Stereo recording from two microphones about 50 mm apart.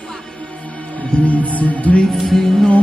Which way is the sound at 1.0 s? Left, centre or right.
Left.